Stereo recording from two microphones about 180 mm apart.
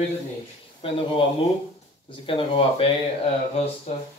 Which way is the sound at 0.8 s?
30° left (ahead or behind).